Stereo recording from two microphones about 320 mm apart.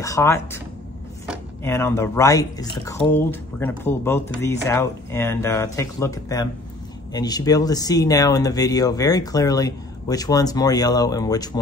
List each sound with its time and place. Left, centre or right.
0.0 s speech: centre
1.6 s speech: centre